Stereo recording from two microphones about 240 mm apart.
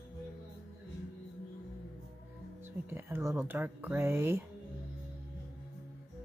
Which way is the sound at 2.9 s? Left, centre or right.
Centre.